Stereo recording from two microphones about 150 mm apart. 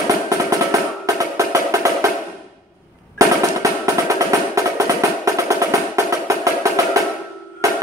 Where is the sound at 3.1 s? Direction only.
20° right (ahead or behind).